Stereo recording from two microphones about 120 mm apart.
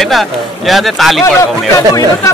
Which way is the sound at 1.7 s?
25° left (ahead or behind).